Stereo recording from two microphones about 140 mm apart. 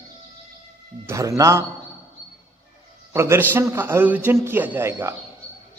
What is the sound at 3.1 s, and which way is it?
Speech, 20° right (ahead or behind).